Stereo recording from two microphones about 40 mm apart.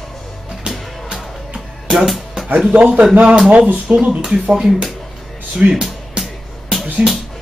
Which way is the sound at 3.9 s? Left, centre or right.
Centre.